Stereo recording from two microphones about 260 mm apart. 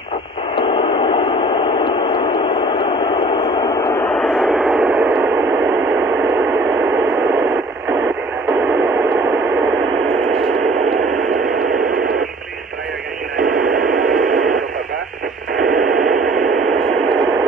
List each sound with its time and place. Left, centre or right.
0.6 s radio: centre
4.1 s radio: centre
13.5 s radio: centre